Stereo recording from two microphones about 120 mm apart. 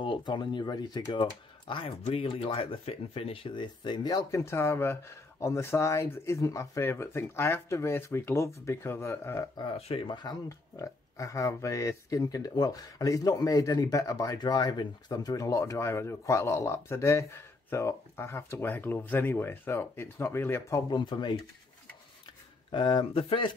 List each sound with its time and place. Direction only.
0.0 s speech: 40° left (ahead or behind); by 9.5 s 20° left (ahead or behind)
9.8 s speech: 55° left (ahead or behind)
10.0 s speech: 35° left (ahead or behind)
21.0 s speech: 40° left (ahead or behind)
22.7 s speech: 40° left (ahead or behind)